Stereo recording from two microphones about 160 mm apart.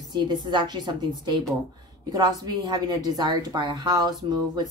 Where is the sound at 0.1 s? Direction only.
30° right (ahead or behind).